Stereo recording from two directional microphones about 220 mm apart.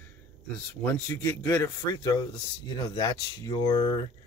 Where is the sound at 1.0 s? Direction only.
10° left (ahead or behind).